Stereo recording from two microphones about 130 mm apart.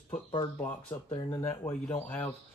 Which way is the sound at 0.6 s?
15° left (ahead or behind).